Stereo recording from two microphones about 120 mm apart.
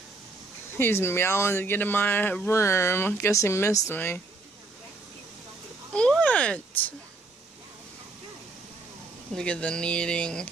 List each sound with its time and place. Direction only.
0.7 s speech: 20° left (ahead or behind)
5.9 s a sound: 10° left (ahead or behind)
9.3 s speech: 10° left (ahead or behind)